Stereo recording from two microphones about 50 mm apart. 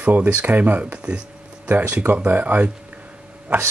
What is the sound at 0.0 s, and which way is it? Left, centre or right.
Speech, right.